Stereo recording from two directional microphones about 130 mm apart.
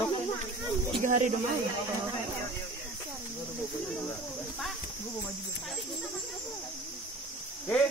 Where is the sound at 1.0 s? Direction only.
75° right (ahead or behind).